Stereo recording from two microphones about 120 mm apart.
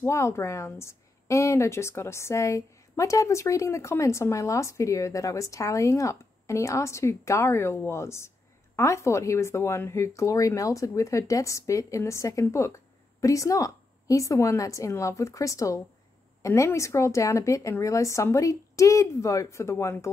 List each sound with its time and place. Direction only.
0.0 s a woman's voice: 25° left (ahead or behind)